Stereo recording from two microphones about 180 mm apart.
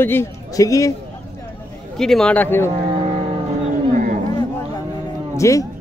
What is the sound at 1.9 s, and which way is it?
Speech, centre (ahead or behind).